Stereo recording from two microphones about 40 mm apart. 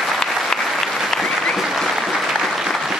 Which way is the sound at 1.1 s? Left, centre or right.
Centre.